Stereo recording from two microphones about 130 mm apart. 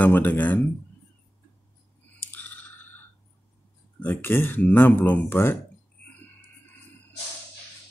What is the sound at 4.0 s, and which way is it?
Speech, 15° left (ahead or behind).